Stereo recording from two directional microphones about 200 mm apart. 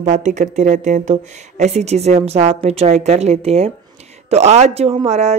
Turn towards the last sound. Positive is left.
turn(degrees=-35)  # may be behind; listen again after turning